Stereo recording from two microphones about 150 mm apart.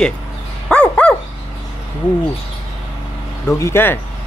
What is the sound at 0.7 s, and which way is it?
Dog, 5° left (ahead or behind).